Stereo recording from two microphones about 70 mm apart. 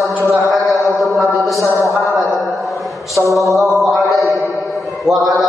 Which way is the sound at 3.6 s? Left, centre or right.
Centre.